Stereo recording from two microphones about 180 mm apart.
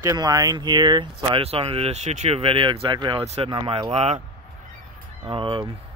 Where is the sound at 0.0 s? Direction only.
20° right (ahead or behind); by 4.2 s 35° right (ahead or behind).